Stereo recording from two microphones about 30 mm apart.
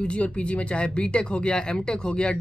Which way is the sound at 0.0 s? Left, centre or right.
Left.